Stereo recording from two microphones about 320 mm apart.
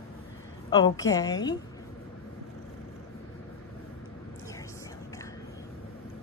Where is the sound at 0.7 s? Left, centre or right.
Centre.